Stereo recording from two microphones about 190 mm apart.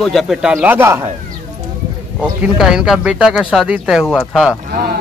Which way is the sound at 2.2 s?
5° right (ahead or behind).